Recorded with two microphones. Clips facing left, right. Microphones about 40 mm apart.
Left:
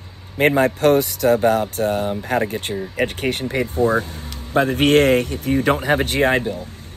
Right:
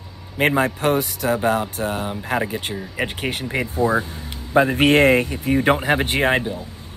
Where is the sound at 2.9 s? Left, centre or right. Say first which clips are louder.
Left 4 dB; right.